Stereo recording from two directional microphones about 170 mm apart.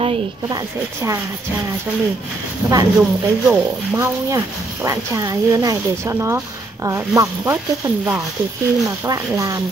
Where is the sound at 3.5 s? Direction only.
10° right (ahead or behind).